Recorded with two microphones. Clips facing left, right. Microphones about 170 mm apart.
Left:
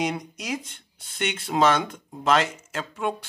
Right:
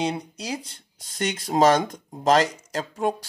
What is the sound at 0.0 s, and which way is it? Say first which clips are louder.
Speech: right 1 dB; 30° right (ahead or behind).